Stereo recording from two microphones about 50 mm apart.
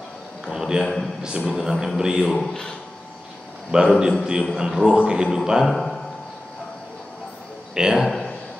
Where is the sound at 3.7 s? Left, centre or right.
Centre.